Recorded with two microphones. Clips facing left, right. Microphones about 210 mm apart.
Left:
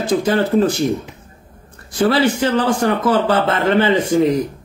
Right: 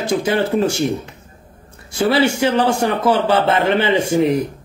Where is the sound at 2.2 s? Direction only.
10° right (ahead or behind).